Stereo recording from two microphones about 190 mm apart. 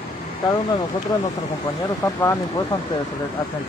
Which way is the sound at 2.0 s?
15° left (ahead or behind).